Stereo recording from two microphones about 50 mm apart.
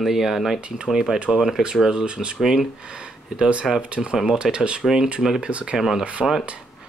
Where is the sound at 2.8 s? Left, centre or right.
Centre.